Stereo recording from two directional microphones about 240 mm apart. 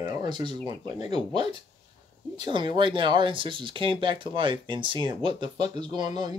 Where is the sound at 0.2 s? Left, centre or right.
Centre.